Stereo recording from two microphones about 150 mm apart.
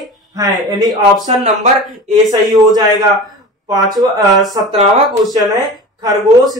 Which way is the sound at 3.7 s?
25° right (ahead or behind).